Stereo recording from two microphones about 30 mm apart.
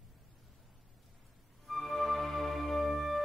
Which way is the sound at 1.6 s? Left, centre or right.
Centre.